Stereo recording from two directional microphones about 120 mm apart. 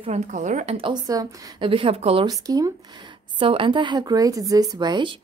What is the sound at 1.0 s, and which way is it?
Speech, 30° right (ahead or behind).